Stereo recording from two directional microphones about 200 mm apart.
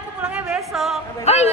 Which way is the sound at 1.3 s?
30° left (ahead or behind).